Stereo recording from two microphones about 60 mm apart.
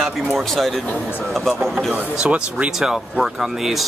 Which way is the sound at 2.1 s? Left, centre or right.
Centre.